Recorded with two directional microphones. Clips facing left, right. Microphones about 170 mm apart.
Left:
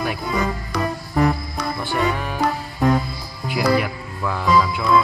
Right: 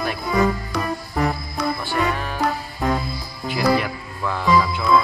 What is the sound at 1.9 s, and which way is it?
Music, 20° left (ahead or behind).